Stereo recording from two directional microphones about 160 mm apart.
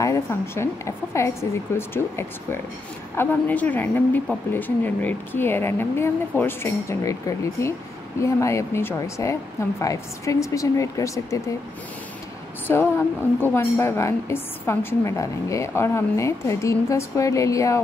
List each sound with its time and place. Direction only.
0.0 s a woman's voice: 15° left (ahead or behind)
12.6 s a woman's voice: 15° left (ahead or behind)